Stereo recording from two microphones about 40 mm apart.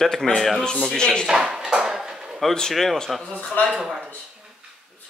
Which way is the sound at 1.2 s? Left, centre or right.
Centre.